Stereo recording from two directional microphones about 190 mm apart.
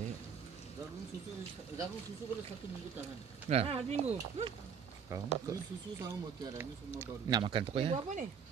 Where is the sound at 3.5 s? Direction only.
30° right (ahead or behind).